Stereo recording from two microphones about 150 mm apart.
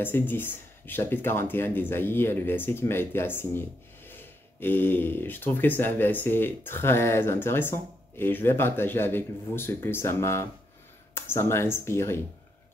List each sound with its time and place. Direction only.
0.0 s speech: 15° left (ahead or behind)